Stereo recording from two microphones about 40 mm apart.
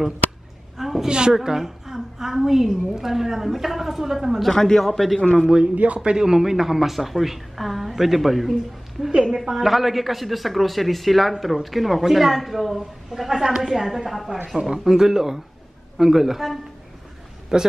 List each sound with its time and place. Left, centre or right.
0.7 s a sound: centre
1.0 s a woman's voice: right
4.5 s a man's voice: centre
6.0 s a man's voice: centre
9.3 s a man's voice: centre
17.5 s a woman's voice: centre